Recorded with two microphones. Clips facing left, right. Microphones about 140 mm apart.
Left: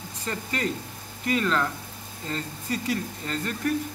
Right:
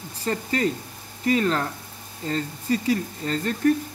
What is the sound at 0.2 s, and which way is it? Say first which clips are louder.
Speech: right 6 dB; 35° right (ahead or behind).